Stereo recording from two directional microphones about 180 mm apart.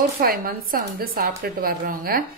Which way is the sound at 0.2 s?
55° right (ahead or behind).